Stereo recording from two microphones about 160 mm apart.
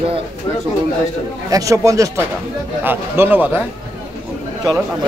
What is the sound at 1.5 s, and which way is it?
Speech, 20° right (ahead or behind).